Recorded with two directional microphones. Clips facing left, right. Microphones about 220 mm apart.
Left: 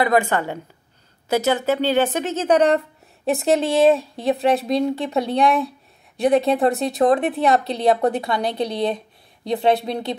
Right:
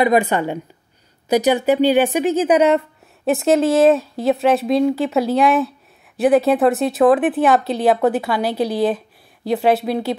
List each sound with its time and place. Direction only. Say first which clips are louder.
0.0 s speech: right 3 dB; 20° right (ahead or behind)
3.3 s speech: right 4 dB; centre (ahead or behind)